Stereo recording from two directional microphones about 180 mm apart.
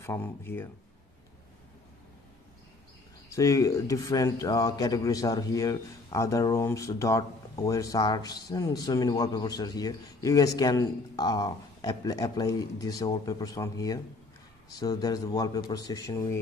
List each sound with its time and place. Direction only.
0.0 s speech: 15° left (ahead or behind)
3.3 s speech: 20° left (ahead or behind)